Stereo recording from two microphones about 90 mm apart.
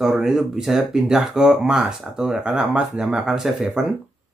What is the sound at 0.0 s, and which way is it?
Speech, 5° right (ahead or behind).